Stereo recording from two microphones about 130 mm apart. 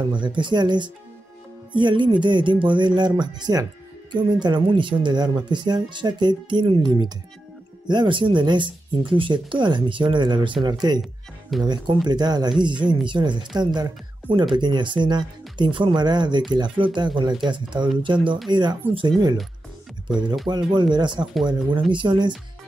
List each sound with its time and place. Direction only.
0.0 s speech: 35° right (ahead or behind)